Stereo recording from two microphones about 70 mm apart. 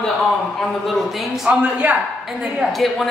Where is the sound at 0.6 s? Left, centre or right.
Centre.